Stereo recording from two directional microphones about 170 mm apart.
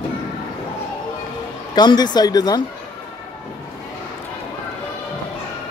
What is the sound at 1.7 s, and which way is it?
Speech, 25° left (ahead or behind).